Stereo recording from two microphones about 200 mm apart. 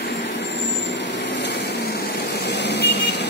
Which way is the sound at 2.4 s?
55° left (ahead or behind).